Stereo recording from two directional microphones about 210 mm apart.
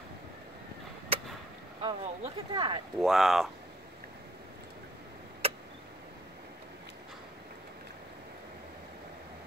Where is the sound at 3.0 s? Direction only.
Centre (ahead or behind).